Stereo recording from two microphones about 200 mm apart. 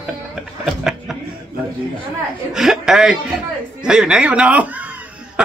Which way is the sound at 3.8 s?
5° right (ahead or behind).